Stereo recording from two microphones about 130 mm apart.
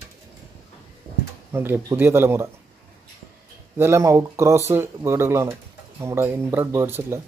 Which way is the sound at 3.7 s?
20° right (ahead or behind).